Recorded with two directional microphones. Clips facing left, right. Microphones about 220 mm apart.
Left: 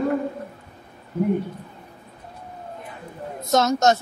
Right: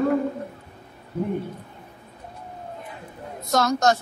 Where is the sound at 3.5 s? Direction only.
20° left (ahead or behind).